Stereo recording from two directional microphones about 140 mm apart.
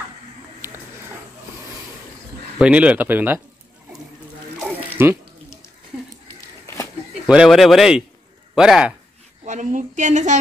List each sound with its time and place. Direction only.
0.6 s a sound: 15° right (ahead or behind)
2.6 s speech: 10° right (ahead or behind)
4.8 s water: 15° right (ahead or behind)
7.2 s speech: 5° right (ahead or behind)
9.4 s a woman's voice: 60° right (ahead or behind)